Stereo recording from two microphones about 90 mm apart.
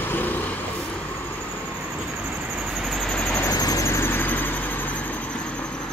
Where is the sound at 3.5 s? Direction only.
45° left (ahead or behind); by 5.8 s 10° left (ahead or behind).